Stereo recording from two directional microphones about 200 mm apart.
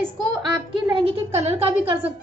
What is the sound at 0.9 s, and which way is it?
Speech, 30° right (ahead or behind).